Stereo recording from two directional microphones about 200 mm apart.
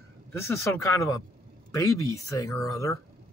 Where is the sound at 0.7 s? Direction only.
15° left (ahead or behind).